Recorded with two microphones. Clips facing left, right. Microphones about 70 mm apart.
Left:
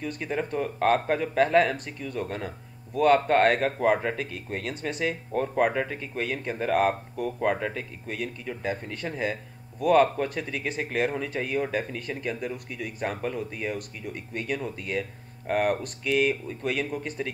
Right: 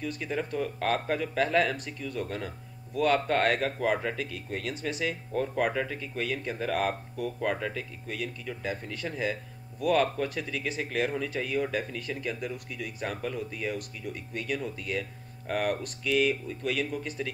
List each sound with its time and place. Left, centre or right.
0.5 s speech: left
12.4 s speech: left
13.7 s speech: left